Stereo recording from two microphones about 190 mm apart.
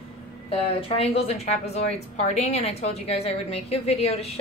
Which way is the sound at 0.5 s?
30° left (ahead or behind).